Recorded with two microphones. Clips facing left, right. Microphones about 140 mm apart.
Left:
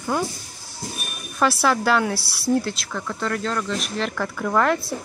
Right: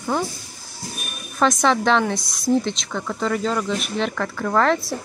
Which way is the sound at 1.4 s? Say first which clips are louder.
Right 2 dB; 5° left (ahead or behind).